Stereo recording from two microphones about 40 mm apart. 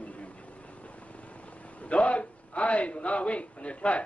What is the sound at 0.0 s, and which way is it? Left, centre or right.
Vehicle, left.